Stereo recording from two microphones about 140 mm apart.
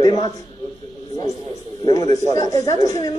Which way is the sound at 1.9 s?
25° left (ahead or behind).